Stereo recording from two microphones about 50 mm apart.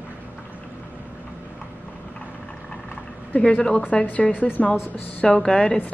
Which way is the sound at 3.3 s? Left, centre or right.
Left.